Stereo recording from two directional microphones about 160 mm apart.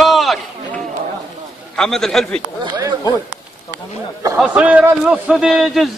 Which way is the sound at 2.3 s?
25° right (ahead or behind).